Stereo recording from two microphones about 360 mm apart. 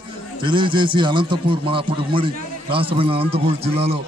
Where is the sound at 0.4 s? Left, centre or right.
Centre.